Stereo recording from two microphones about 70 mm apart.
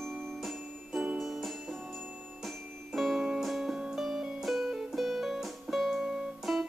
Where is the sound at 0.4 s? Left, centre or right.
Centre.